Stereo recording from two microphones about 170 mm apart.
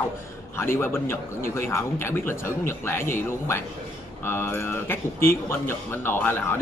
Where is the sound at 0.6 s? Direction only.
15° left (ahead or behind).